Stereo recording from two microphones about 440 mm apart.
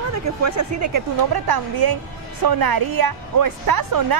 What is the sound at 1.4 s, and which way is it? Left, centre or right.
A woman's voice, right.